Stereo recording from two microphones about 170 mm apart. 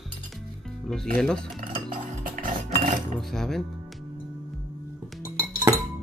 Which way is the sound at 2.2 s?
55° right (ahead or behind).